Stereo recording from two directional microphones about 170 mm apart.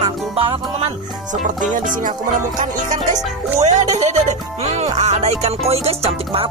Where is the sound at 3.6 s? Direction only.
40° right (ahead or behind).